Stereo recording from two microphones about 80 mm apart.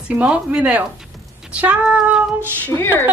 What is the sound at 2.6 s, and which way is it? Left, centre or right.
Speech, left.